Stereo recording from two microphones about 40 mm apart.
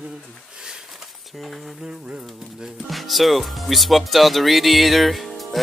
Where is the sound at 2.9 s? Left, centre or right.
Centre.